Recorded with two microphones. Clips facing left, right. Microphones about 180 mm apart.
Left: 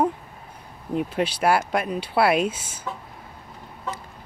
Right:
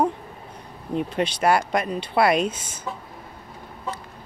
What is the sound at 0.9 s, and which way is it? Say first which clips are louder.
Speech: even; 5° left (ahead or behind).